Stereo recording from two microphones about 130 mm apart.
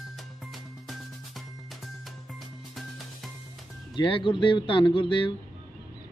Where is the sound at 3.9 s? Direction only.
40° left (ahead or behind).